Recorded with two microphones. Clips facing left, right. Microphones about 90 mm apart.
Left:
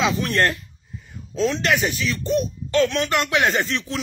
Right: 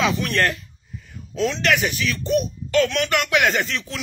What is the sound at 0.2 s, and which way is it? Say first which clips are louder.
A man's voice: left 1 dB; 25° left (ahead or behind).